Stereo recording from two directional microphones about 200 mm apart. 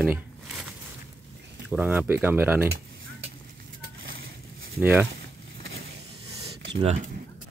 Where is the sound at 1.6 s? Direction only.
5° right (ahead or behind).